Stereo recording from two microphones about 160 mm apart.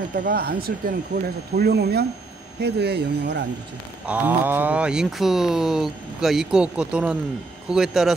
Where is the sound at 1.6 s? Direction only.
80° right.